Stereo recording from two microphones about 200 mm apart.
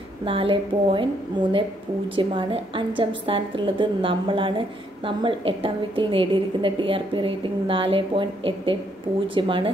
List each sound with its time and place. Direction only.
0.2 s a woman's voice: 25° right (ahead or behind)
2.1 s a woman's voice: 25° right (ahead or behind)